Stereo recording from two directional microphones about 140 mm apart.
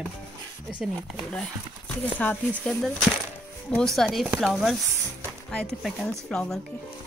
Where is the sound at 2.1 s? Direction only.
10° left (ahead or behind).